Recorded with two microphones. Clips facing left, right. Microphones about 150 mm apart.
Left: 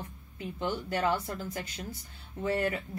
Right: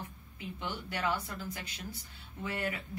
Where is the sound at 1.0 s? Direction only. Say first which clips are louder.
Left 3 dB; 35° left (ahead or behind).